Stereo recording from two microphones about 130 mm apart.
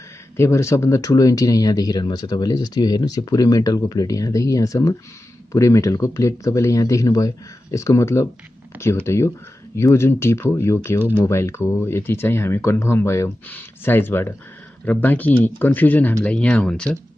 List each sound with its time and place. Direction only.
0.4 s speech: 20° left (ahead or behind)